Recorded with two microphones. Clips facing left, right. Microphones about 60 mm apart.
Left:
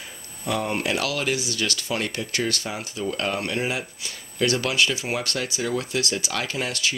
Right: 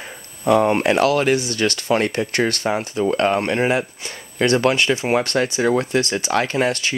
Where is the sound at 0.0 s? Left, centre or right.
Right.